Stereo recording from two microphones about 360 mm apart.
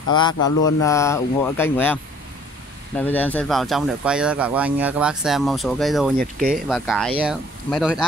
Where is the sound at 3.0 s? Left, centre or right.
Centre.